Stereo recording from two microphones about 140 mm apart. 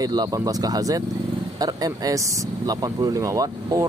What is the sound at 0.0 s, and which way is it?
Speech, 25° right (ahead or behind).